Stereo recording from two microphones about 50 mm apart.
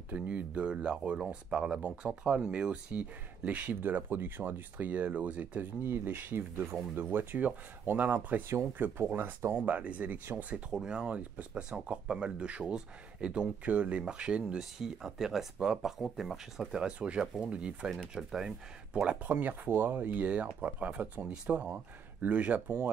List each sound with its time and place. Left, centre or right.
0.1 s speech: right
5.6 s speech: right
6.6 s speech: right
7.1 s speech: right
9.7 s speech: right
10.5 s speech: centre
11.0 s speech: right
18.1 s speech: centre
18.9 s speech: right
19.4 s speech: right